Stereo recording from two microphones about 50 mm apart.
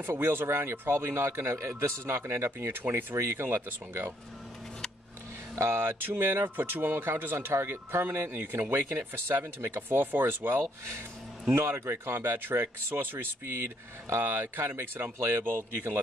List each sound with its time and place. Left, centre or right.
0.1 s speech: right
1.8 s speech: right
5.6 s speech: right
14.2 s speech: right